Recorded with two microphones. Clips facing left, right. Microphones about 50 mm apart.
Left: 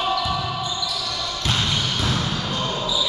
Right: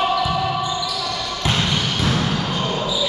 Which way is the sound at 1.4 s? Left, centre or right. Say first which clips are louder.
Right 3 dB; right.